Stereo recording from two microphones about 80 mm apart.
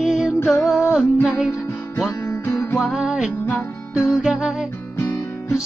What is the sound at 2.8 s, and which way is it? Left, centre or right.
Music, centre.